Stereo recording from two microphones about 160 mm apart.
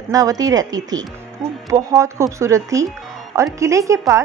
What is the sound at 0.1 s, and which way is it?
Speech, 20° right (ahead or behind).